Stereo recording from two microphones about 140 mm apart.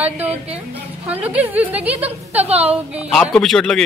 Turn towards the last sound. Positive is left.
turn(degrees=5)  # may be behind; listen again after turning